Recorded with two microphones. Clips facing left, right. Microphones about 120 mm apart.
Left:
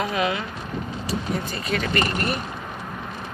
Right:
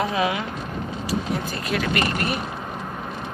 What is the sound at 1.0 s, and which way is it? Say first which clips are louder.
Speech: right 2 dB; 5° right (ahead or behind).